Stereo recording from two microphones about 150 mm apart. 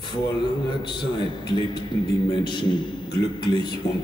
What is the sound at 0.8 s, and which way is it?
A man's voice, 30° left (ahead or behind).